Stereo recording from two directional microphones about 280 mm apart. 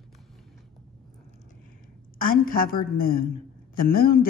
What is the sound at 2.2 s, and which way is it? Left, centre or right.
Speech, left.